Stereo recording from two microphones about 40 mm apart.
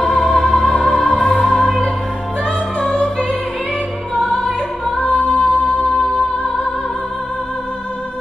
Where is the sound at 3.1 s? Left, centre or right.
Left.